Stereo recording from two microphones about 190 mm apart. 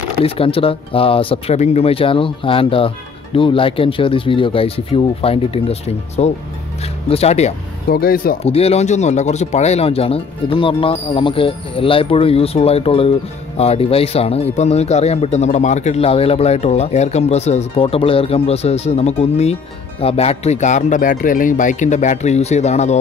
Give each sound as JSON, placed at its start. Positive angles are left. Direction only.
{"t": 0.2, "sound": "speech", "side_deg": 30}
{"t": 7.9, "sound": "speech", "side_deg": 50}
{"t": 8.5, "sound": "speech", "side_deg": 30}